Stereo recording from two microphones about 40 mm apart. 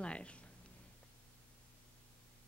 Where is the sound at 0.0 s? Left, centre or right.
Left.